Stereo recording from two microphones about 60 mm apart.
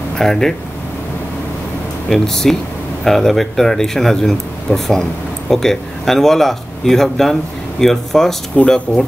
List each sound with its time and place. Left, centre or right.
0.2 s speech: centre
2.0 s speech: centre
8.5 s speech: centre